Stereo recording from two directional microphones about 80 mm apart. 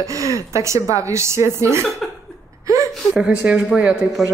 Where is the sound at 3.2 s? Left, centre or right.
Centre.